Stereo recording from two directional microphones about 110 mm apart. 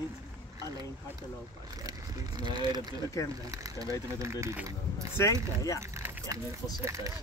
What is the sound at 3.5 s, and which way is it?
Speech, 30° right (ahead or behind).